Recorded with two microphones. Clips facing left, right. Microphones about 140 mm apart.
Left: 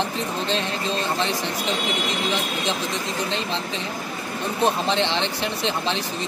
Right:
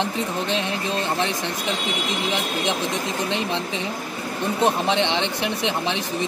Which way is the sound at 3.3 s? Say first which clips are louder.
Right 2 dB; 15° right (ahead or behind).